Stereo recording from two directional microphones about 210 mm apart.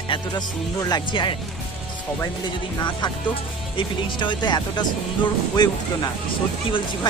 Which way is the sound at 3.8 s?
25° left (ahead or behind).